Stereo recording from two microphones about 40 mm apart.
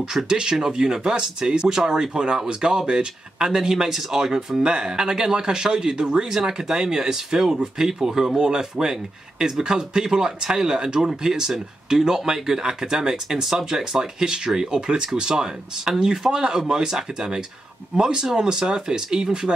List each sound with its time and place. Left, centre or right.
0.0 s speech: centre